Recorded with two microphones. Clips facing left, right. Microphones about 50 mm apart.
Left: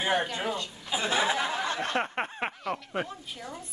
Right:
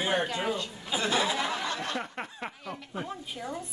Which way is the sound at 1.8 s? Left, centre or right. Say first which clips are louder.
Left 5 dB; left.